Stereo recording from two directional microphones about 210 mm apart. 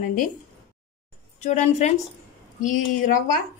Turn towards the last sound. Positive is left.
turn(degrees=40)  # may be behind; listen again after turning